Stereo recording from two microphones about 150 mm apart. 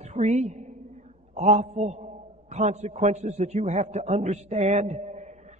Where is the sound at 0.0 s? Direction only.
50° right (ahead or behind).